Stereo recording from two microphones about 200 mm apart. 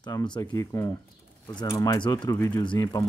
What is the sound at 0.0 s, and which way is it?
Speech, 20° left (ahead or behind).